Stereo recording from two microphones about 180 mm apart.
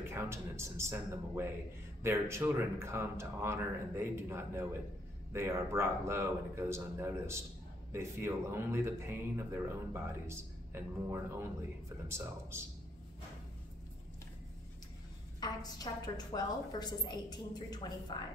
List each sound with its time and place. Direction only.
0.0 s speech: 15° right (ahead or behind)
15.4 s a woman's voice: 20° left (ahead or behind)